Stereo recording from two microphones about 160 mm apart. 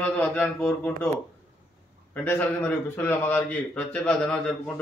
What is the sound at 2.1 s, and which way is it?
A man's voice, 10° left (ahead or behind).